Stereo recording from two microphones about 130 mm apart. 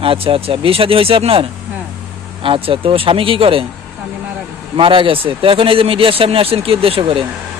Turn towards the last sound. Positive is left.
turn(degrees=-45)  # may be behind; listen again after turning